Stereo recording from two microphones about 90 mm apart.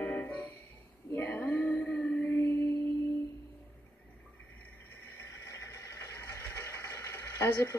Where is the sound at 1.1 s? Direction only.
20° left (ahead or behind).